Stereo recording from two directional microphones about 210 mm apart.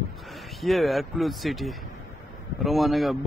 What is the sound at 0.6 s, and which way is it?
Speech, centre (ahead or behind).